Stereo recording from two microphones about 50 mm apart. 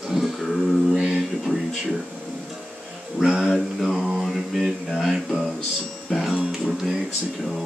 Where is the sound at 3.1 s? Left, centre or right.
Centre.